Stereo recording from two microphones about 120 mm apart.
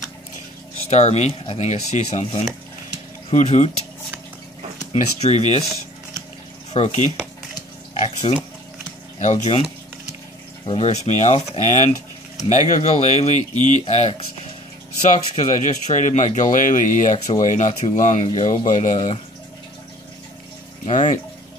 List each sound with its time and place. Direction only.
0.7 s speech: 65° left (ahead or behind)
1.4 s speech: 50° left (ahead or behind)
1.7 s speech: 70° left (ahead or behind)
4.9 s speech: 70° left (ahead or behind)
6.7 s speech: 65° left (ahead or behind)
10.6 s speech: 50° left (ahead or behind)
10.9 s speech: 75° left (ahead or behind)
15.0 s speech: 80° left
18.7 s speech: 75° left (ahead or behind)
20.8 s speech: 80° left